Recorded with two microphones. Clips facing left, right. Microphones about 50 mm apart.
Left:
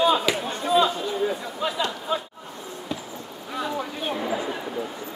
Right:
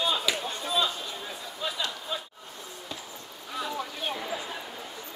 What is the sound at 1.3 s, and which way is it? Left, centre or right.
Speech, left.